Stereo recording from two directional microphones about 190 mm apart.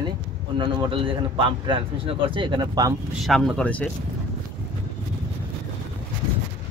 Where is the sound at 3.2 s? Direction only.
Centre (ahead or behind).